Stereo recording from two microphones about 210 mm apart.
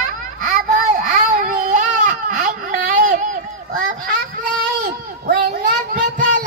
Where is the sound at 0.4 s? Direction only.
40° right (ahead or behind).